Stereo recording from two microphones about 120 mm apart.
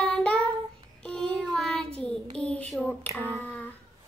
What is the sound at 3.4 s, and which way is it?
Humming, 15° left (ahead or behind).